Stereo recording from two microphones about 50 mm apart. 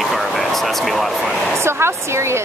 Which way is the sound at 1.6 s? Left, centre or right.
Right.